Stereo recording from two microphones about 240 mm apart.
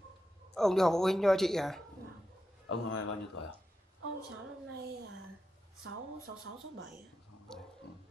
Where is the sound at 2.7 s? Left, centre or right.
Left.